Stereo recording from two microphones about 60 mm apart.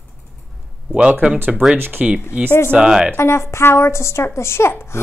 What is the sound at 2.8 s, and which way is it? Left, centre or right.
Speech, centre.